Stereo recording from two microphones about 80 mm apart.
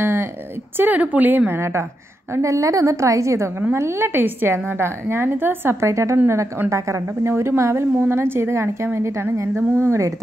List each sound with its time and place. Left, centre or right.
0.0 s a sound: right
0.7 s a woman's voice: right
6.1 s a woman's voice: right